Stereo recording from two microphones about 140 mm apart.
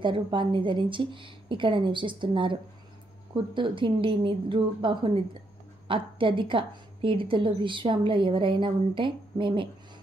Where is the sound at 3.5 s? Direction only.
35° right (ahead or behind).